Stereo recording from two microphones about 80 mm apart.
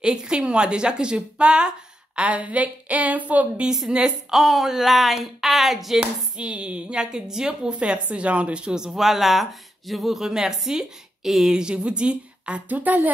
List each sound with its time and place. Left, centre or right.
0.0 s a woman's voice: centre
6.3 s a woman's voice: centre